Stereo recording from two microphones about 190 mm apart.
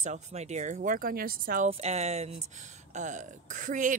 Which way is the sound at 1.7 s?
35° right (ahead or behind).